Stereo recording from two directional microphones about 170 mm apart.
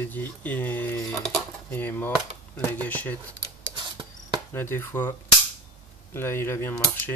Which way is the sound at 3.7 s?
30° right (ahead or behind).